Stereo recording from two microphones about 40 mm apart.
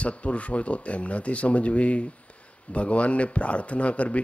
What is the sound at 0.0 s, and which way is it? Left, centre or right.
Speech, left.